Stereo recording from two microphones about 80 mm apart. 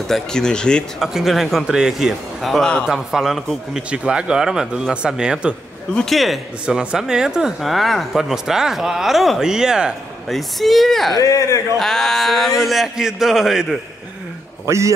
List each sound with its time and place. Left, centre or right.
0.1 s speech: centre
0.9 s speech: centre
5.9 s speech: centre
6.6 s speech: centre
10.3 s speech: centre
11.1 s a man's voice: left
11.8 s speech: centre
14.7 s a man's voice: right